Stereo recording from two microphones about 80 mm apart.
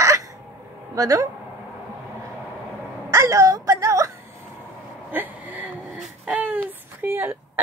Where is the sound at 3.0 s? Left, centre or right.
Right.